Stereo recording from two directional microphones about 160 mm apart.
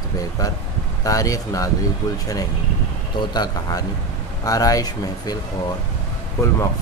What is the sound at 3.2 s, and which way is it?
Speech, 25° left (ahead or behind).